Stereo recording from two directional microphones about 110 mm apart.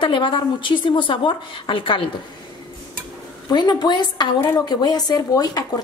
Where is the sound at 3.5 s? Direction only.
40° left (ahead or behind).